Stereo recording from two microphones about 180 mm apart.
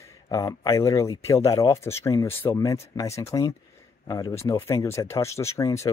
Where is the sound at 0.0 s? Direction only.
20° left (ahead or behind).